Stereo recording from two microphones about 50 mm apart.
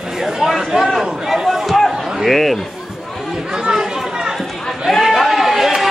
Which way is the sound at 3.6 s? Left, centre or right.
Centre.